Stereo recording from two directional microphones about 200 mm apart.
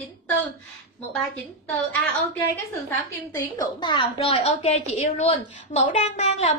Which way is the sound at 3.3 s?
20° left (ahead or behind).